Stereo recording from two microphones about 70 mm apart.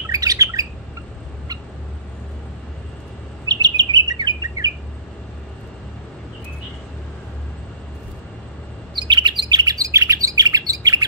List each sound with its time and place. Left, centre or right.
0.1 s squawk: right
3.4 s chirp: right
8.9 s bird: right